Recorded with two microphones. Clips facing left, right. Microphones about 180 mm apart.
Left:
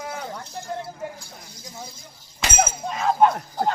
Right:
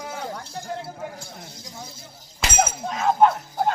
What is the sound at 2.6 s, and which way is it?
Speech, centre (ahead or behind).